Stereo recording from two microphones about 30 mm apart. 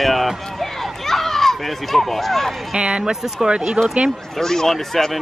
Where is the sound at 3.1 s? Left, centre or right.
Centre.